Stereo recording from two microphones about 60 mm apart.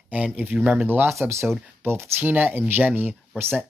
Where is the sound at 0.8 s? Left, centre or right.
Right.